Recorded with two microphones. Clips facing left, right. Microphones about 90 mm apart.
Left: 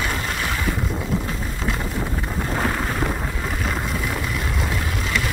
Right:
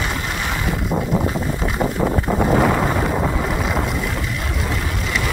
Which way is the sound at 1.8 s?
50° right (ahead or behind).